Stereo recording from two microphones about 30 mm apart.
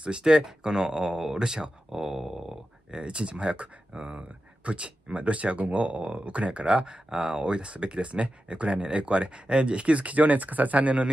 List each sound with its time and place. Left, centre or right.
0.0 s speech: right
2.0 s dog: centre
2.9 s speech: right